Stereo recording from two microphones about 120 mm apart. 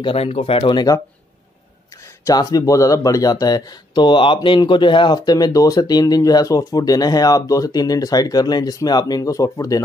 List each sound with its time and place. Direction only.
0.0 s speech: 55° left (ahead or behind); by 1.0 s 35° left (ahead or behind)
2.2 s speech: 30° left (ahead or behind)